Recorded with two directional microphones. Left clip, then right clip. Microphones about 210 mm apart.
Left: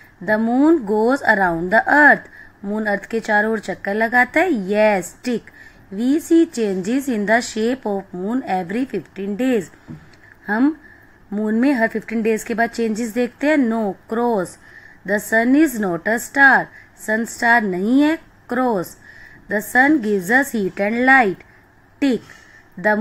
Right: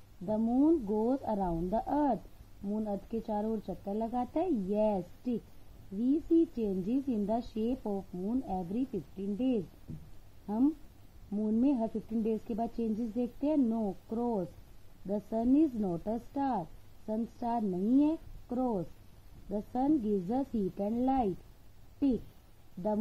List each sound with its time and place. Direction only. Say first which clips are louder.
0.2 s a woman's voice: left 13 dB; 30° left (ahead or behind)
6.6 s a woman's voice: left 13 dB; 30° left (ahead or behind)